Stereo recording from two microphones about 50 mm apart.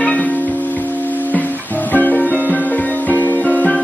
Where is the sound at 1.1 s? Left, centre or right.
Left.